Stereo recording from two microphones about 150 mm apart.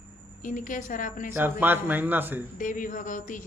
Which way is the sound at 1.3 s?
15° right (ahead or behind).